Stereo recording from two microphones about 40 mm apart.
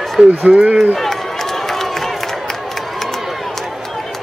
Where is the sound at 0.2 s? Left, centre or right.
Centre.